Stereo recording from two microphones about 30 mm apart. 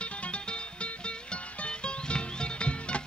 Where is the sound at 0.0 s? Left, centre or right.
Left.